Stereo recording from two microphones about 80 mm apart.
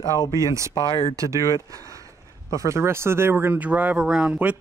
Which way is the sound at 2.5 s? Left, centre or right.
Right.